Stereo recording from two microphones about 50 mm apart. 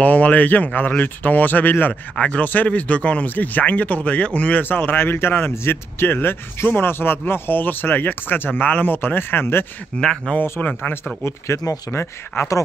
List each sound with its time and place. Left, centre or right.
0.0 s speech: left
2.1 s speech: left
9.9 s speech: centre
10.6 s speech: left
11.2 s speech: left